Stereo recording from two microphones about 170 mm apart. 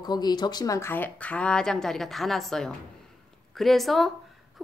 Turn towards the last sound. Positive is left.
turn(degrees=0)  # may be behind; listen again after turning